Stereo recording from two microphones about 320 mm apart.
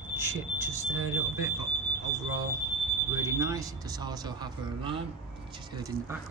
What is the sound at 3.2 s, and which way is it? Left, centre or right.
Speech, centre.